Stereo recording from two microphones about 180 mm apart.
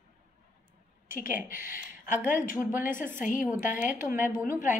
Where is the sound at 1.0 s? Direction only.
50° left (ahead or behind).